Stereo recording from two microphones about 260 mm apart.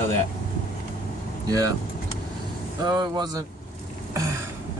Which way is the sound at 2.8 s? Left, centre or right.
Centre.